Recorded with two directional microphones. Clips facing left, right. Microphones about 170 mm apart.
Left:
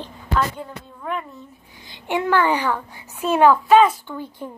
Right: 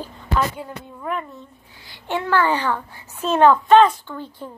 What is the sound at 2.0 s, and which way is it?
A child's voice, 15° left (ahead or behind).